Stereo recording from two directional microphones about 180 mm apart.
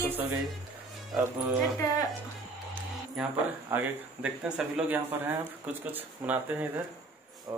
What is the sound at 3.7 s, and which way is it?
Speech, 10° right (ahead or behind).